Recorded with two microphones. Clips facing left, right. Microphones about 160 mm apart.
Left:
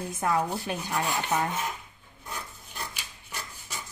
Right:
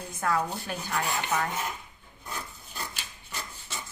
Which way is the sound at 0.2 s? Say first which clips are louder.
Left 1 dB; 20° left (ahead or behind).